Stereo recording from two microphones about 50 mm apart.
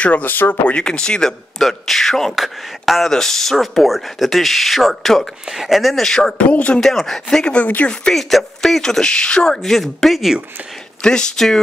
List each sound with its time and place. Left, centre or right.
0.0 s speech: left
0.7 s speech: centre
1.6 s speech: centre
6.0 s speech: centre
6.3 s speech: left
6.8 s speech: centre
7.4 s speech: left
8.1 s speech: centre
11.0 s speech: centre